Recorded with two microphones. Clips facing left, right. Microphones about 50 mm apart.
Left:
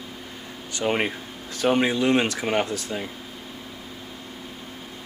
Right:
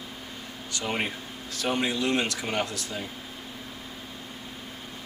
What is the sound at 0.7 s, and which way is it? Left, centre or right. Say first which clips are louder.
Speech: left 6 dB; left.